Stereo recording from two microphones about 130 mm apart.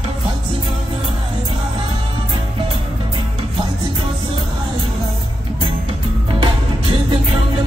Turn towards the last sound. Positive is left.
turn(degrees=-40)  # may be behind; listen again after turning